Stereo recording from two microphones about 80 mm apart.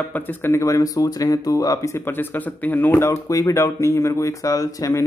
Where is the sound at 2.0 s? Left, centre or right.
Left.